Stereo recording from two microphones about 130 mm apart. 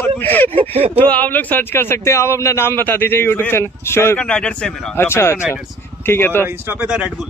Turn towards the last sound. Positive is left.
turn(degrees=-15)  # may be behind; listen again after turning